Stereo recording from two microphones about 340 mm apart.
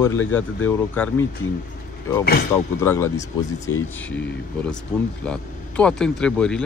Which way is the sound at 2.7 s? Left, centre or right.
Centre.